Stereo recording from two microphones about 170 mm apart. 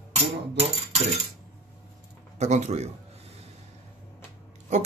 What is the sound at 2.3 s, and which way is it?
Speech, 40° right (ahead or behind).